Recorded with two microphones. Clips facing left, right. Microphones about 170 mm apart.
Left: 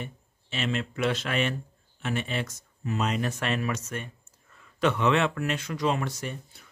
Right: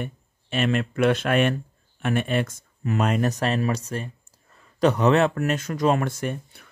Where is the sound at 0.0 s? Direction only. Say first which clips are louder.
Right 6 dB; 55° right (ahead or behind).